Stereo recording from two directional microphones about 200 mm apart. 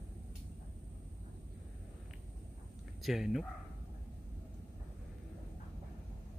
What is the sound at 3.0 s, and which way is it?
Speech, centre (ahead or behind).